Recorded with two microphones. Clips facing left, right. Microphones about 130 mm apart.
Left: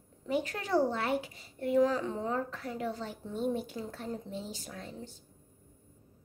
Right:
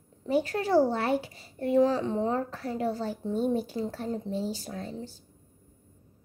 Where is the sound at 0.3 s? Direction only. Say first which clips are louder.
Right 6 dB; 30° right (ahead or behind).